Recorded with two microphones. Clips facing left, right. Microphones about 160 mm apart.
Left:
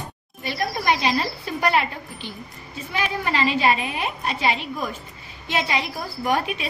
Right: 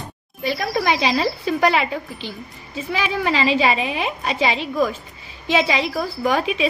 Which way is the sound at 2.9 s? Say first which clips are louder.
Right 3 dB; 90° right.